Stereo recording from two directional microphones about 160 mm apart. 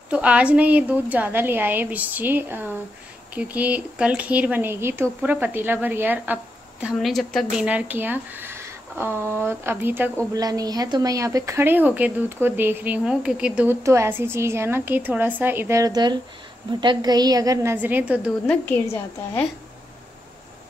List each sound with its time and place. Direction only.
0.1 s speech: 10° right (ahead or behind)
10.3 s a woman's voice: 25° right (ahead or behind)
17.7 s speech: 10° right (ahead or behind)